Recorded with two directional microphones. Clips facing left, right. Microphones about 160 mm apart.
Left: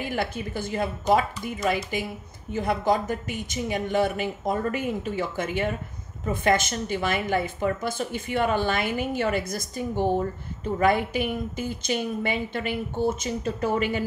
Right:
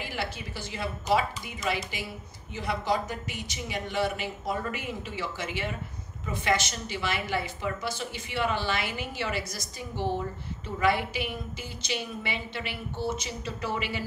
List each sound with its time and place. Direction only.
0.0 s a woman's voice: 50° left (ahead or behind)